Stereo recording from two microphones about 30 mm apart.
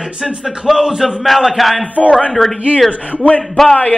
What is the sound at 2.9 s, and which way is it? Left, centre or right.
Speech, left.